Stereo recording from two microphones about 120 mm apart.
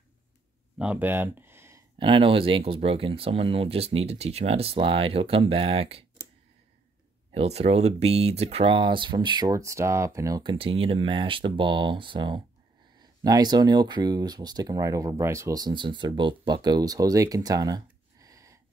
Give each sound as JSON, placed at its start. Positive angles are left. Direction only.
{"t": 0.7, "sound": "speech", "side_deg": -10}
{"t": 2.0, "sound": "speech", "side_deg": -45}
{"t": 7.3, "sound": "speech", "side_deg": -60}
{"t": 9.5, "sound": "speech", "side_deg": -25}
{"t": 10.4, "sound": "speech", "side_deg": -45}